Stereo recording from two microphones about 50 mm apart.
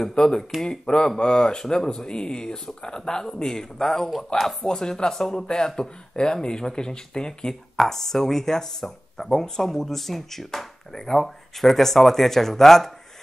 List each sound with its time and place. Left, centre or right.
0.0 s speech: centre
7.7 s speech: centre